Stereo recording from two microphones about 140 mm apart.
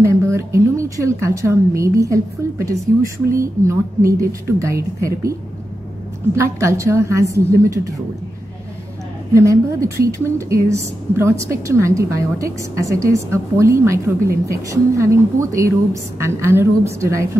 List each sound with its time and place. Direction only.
0.0 s a woman's voice: 20° right (ahead or behind)
6.4 s a woman's voice: 20° right (ahead or behind)
9.3 s a woman's voice: 20° right (ahead or behind)